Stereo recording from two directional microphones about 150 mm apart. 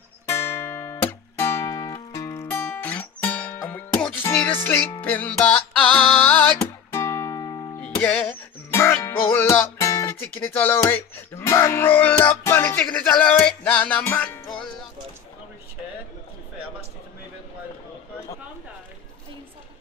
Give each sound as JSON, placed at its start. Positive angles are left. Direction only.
{"t": 0.3, "sound": "music", "side_deg": 15}
{"t": 4.6, "sound": "speech", "side_deg": 15}
{"t": 6.9, "sound": "music", "side_deg": 20}
{"t": 7.8, "sound": "music", "side_deg": 10}
{"t": 10.2, "sound": "speech", "side_deg": 15}